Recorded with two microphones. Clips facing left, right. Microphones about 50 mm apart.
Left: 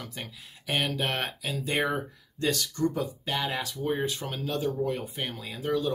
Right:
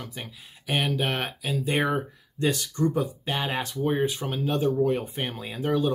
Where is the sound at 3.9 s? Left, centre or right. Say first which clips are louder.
Right 4 dB; centre.